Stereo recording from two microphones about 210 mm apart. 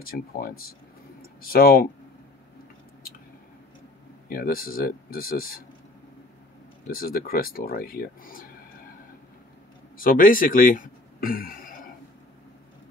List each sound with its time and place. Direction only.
0.0 s speech: 45° left (ahead or behind)
4.3 s speech: 45° left (ahead or behind)
6.9 s speech: 45° left (ahead or behind)
9.9 s speech: 40° left (ahead or behind)